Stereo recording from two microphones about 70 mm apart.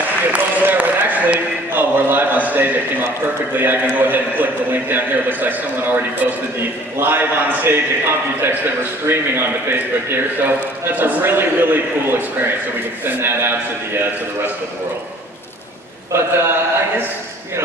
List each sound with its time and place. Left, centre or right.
0.3 s a sound: right
3.5 s a man's voice: right
16.1 s a man's voice: right